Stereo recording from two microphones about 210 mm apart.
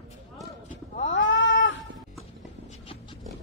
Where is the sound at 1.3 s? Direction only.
60° left (ahead or behind).